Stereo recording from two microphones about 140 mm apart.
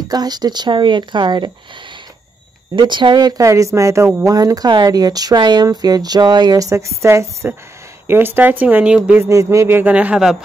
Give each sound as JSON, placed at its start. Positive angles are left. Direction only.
{"t": 0.1, "sound": "speech", "side_deg": -30}
{"t": 2.7, "sound": "speech", "side_deg": -35}
{"t": 9.2, "sound": "speech", "side_deg": -20}